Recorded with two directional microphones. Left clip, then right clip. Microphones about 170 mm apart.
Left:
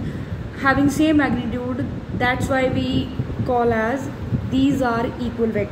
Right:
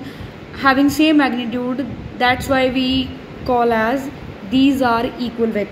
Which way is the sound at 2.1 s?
30° right (ahead or behind).